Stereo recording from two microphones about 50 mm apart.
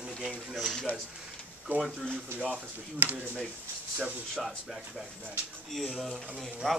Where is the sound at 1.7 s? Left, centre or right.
Right.